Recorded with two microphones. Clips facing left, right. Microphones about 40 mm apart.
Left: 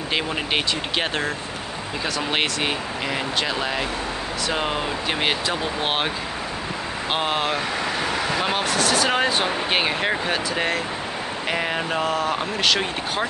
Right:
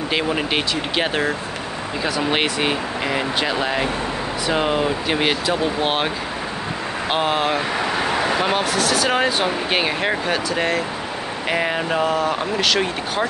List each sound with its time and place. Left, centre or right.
0.1 s speech: centre
7.1 s speech: centre
8.0 s vehicle: right
8.4 s speech: centre